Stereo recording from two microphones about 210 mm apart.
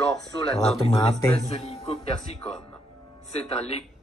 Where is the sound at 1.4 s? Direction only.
30° left (ahead or behind).